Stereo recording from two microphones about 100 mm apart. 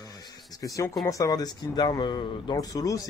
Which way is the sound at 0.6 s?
35° left (ahead or behind).